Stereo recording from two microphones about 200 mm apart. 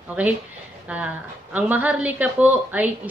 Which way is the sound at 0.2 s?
5° right (ahead or behind).